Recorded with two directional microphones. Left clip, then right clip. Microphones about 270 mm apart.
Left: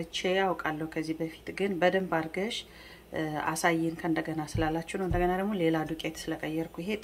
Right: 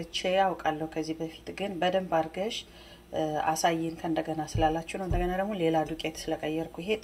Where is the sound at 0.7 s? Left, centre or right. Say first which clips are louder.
Right 2 dB; left.